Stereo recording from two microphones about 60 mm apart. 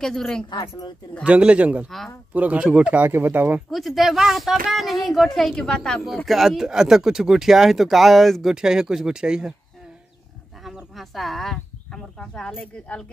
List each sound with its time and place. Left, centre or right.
0.0 s a woman's voice: centre
1.2 s speech: centre
3.1 s speech: right
3.7 s a child's voice: centre
6.2 s speech: centre
11.0 s speech: centre